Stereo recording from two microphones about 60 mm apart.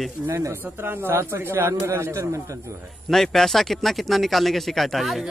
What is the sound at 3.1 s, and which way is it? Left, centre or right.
Speech, centre.